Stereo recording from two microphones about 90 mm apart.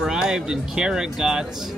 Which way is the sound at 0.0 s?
5° right (ahead or behind).